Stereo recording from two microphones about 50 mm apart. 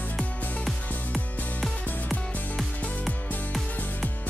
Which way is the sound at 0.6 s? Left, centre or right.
Centre.